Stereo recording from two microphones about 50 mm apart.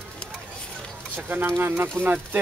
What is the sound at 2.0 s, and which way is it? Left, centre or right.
Speech, centre.